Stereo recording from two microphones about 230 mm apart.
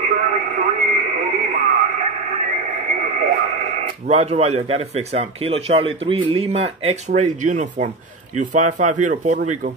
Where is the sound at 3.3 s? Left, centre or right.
Right.